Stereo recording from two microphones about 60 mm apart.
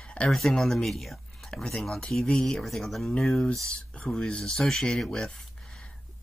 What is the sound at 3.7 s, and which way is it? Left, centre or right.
Speech, centre.